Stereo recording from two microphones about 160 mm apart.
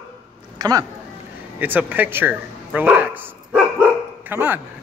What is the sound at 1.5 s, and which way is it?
Bow-wow, 10° right (ahead or behind).